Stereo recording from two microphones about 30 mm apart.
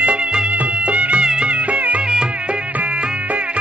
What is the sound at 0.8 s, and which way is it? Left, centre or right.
Music, right.